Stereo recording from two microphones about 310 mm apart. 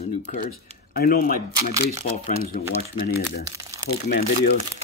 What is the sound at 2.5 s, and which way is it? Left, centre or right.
Speech, left.